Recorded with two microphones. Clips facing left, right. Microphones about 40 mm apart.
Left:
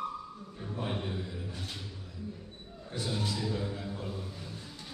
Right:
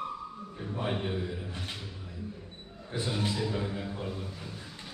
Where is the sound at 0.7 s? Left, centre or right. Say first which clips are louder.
Right 3 dB; right.